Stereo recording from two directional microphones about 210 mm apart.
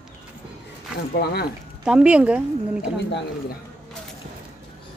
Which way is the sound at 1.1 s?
50° left (ahead or behind).